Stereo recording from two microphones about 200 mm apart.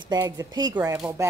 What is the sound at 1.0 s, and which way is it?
Speech, 10° right (ahead or behind).